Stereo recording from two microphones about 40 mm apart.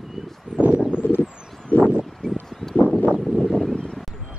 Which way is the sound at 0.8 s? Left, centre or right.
Right.